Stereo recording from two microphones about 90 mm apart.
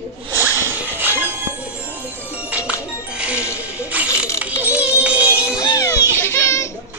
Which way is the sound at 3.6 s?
15° right (ahead or behind).